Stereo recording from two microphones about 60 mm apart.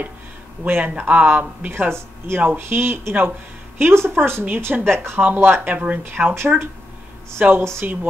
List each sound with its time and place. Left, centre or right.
0.7 s speech: right
2.2 s speech: right
5.2 s speech: right